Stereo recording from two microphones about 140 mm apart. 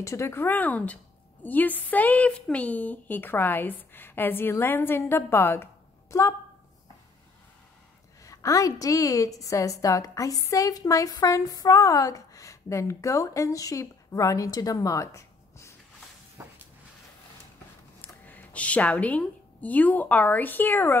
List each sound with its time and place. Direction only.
0.0 s speech: 20° left (ahead or behind)
8.2 s a woman's voice: 25° left (ahead or behind)
16.4 s vehicle: 20° right (ahead or behind)
18.0 s a woman's voice: 10° left (ahead or behind)